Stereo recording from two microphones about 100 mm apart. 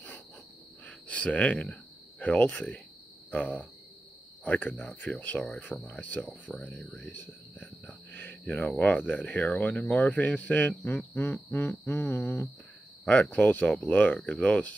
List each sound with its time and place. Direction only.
0.8 s a sound: 15° left (ahead or behind)
3.3 s speech: 15° left (ahead or behind)
7.8 s cricket: 20° left (ahead or behind)
8.6 s speech: 15° left (ahead or behind)